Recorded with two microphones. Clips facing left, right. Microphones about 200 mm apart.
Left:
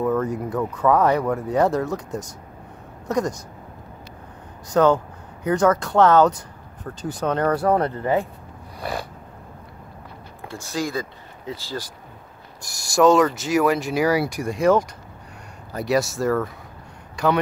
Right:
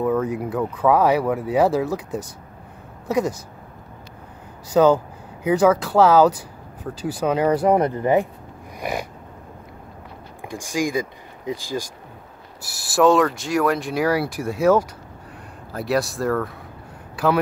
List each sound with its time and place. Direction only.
0.0 s speech: centre (ahead or behind)
3.1 s speech: 5° right (ahead or behind)
4.7 s speech: 5° right (ahead or behind)
8.7 s a sound: 15° right (ahead or behind)
10.5 s speech: 15° right (ahead or behind)
12.6 s speech: 5° right (ahead or behind)